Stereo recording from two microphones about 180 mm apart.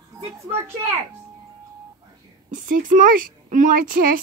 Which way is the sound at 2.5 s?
50° right (ahead or behind).